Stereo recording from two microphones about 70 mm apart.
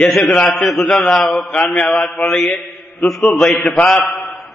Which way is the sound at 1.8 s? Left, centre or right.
Centre.